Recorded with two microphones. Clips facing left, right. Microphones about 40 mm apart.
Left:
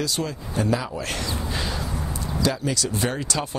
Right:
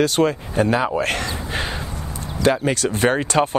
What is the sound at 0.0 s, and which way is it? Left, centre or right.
A man's voice, right.